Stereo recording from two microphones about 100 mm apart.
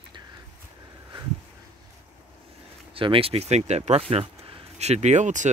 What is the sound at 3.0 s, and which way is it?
Speech, 65° right (ahead or behind).